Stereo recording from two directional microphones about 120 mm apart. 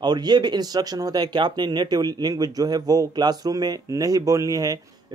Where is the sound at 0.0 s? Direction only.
35° right (ahead or behind).